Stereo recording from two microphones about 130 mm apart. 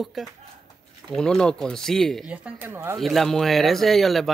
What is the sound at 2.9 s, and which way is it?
Speech, centre (ahead or behind).